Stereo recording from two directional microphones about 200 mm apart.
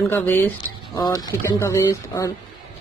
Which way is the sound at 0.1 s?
10° left (ahead or behind).